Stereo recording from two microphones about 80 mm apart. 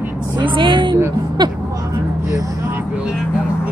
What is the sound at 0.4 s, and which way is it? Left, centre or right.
Speech, right.